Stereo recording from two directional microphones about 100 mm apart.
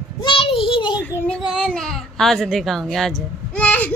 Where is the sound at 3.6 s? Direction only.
15° left (ahead or behind).